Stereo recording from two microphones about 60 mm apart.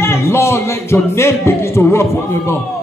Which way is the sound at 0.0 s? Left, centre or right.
Left.